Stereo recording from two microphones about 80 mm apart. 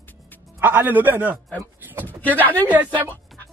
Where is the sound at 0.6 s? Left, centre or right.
Right.